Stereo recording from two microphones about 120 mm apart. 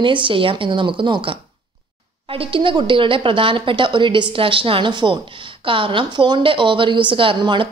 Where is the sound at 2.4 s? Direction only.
45° right (ahead or behind).